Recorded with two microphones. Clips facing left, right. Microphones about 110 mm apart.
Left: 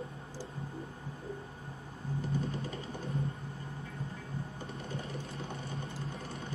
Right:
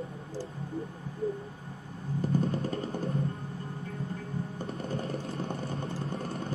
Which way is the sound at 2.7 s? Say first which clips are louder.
Right 7 dB; 55° right (ahead or behind).